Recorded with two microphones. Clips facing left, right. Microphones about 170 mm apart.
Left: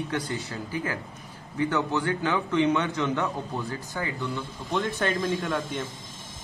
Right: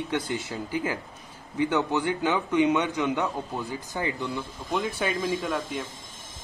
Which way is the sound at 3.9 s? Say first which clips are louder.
Right 1 dB; 20° right (ahead or behind).